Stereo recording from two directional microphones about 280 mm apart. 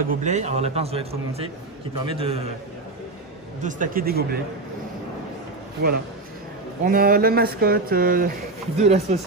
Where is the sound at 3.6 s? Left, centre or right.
Right.